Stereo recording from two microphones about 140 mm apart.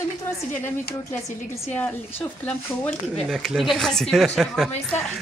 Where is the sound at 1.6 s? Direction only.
10° left (ahead or behind).